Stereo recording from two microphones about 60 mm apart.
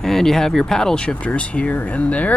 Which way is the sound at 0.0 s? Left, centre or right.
Centre.